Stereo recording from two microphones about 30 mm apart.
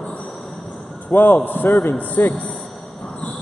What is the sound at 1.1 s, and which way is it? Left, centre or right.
Speech, left.